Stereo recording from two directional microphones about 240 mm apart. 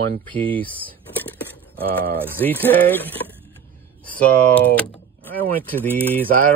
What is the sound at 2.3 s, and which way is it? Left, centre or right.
Speech, centre.